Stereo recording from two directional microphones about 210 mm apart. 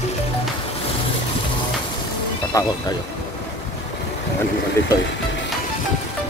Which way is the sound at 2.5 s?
15° left (ahead or behind).